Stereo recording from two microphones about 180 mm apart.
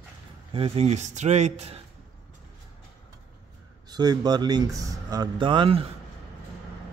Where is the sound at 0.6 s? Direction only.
35° right (ahead or behind).